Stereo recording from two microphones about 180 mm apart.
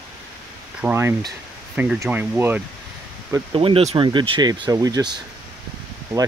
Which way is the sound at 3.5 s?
30° right (ahead or behind).